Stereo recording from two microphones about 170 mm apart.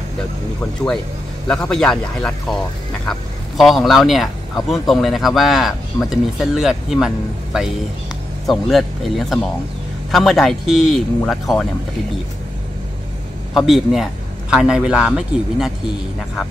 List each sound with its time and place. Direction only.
1.5 s speech: 5° left (ahead or behind)
8.5 s speech: centre (ahead or behind)
13.5 s speech: centre (ahead or behind)